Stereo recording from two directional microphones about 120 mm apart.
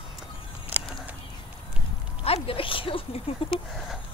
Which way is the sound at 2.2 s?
55° left (ahead or behind).